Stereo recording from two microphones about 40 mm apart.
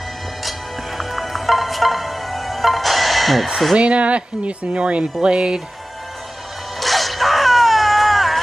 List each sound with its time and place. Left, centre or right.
0.4 s music: centre
3.7 s speech: right
6.8 s wail: centre